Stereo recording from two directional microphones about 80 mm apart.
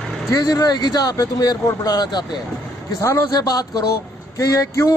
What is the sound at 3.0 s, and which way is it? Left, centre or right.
A man's voice, left.